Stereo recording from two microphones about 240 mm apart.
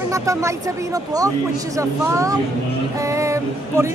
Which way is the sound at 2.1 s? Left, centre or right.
Centre.